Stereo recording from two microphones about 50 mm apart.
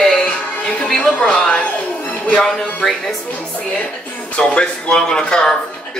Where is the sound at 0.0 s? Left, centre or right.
Centre.